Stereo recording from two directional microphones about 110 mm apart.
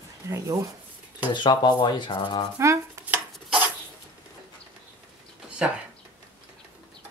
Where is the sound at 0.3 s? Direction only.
30° right (ahead or behind).